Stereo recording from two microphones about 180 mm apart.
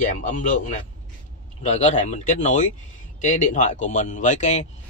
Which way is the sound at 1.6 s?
40° left (ahead or behind).